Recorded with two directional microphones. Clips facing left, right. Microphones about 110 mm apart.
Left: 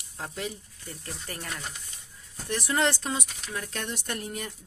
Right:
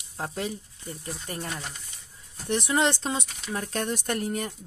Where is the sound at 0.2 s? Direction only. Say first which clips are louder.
Right 4 dB; 35° right (ahead or behind).